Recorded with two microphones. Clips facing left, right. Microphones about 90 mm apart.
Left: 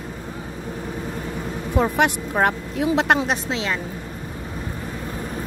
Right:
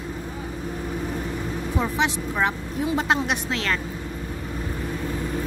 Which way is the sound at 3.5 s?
15° left (ahead or behind).